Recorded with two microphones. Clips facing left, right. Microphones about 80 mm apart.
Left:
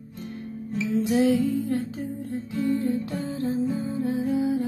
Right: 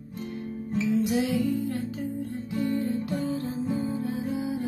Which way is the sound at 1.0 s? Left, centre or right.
Left.